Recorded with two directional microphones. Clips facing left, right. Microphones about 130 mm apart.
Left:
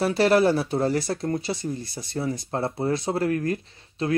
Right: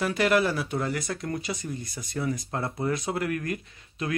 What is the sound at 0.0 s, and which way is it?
Speech, 35° left (ahead or behind).